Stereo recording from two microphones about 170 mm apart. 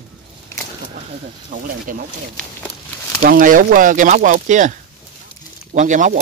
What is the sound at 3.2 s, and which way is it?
Speech, 55° right (ahead or behind).